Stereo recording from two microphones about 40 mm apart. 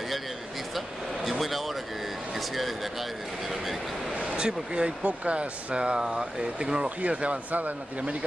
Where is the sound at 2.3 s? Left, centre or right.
Centre.